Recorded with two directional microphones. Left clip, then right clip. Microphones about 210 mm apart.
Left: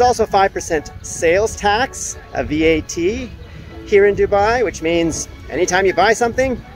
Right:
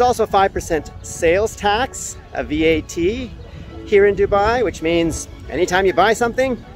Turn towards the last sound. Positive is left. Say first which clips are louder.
# left 1 dB
turn(degrees=-5)  # may be behind; listen again after turning